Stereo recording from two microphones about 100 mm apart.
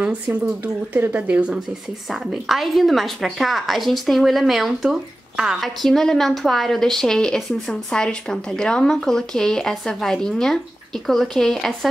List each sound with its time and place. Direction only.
0.0 s speech: 15° right (ahead or behind)
2.0 s a woman's voice: centre (ahead or behind)